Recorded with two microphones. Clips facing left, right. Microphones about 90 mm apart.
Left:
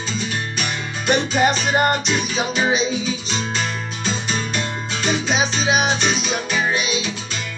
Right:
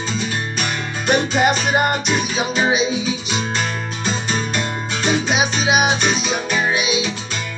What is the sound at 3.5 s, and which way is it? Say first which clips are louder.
Music: right 2 dB; 45° right (ahead or behind).